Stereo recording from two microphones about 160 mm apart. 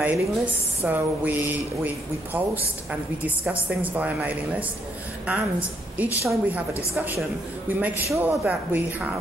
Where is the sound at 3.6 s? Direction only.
10° right (ahead or behind).